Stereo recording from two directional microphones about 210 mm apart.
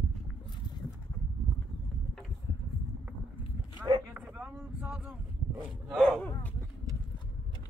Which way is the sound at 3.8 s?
15° right (ahead or behind).